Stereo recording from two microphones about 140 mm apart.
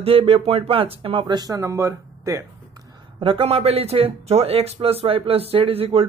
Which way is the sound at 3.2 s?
45° right (ahead or behind).